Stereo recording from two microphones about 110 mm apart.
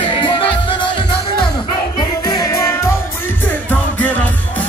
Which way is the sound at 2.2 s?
35° left (ahead or behind).